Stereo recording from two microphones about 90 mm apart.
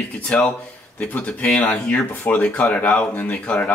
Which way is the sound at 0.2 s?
10° left (ahead or behind).